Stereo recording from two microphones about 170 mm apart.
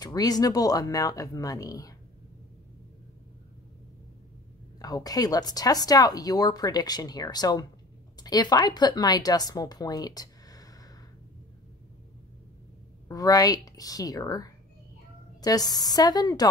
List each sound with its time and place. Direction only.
0.0 s speech: 20° left (ahead or behind)
4.7 s speech: 20° left (ahead or behind)
13.1 s speech: 20° left (ahead or behind)